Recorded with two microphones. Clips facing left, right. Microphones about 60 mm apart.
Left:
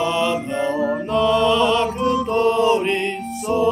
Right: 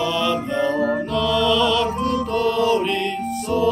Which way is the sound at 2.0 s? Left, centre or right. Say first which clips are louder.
Left 2 dB; centre.